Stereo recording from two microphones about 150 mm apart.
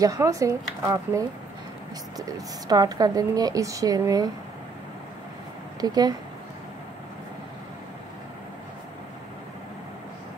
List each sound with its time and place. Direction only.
0.0 s speech: 20° right (ahead or behind)
5.8 s speech: 25° right (ahead or behind)